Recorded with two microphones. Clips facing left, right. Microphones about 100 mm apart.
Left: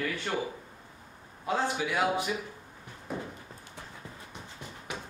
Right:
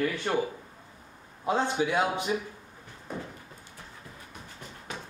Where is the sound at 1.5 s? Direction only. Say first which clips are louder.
Right 3 dB; 25° right (ahead or behind).